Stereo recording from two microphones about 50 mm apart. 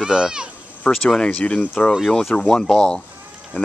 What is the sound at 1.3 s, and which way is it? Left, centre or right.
Speech, left.